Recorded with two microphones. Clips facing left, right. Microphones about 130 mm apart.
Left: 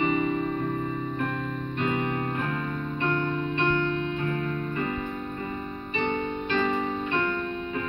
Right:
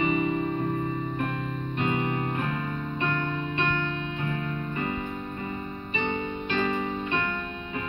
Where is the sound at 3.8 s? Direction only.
10° right (ahead or behind).